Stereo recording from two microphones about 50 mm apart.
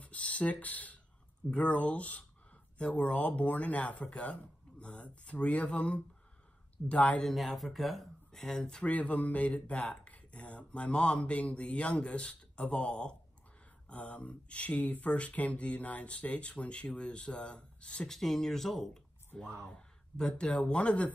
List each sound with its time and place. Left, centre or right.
0.0 s speech: left
7.2 s speech: centre
8.9 s speech: left
18.0 s speech: centre; by 21.1 s left